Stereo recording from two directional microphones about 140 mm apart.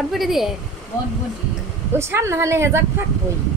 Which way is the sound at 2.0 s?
20° right (ahead or behind).